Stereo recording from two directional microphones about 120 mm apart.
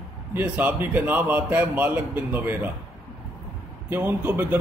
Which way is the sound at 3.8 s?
20° right (ahead or behind).